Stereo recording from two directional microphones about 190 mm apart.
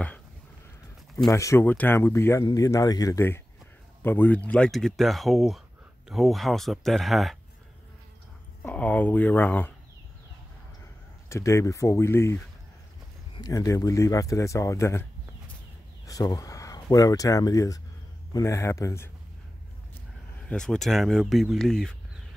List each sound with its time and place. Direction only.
1.3 s speech: 15° left (ahead or behind); by 7.3 s centre (ahead or behind)
8.6 s speech: 10° left (ahead or behind)
11.2 s speech: 15° left (ahead or behind)
20.4 s speech: 5° left (ahead or behind)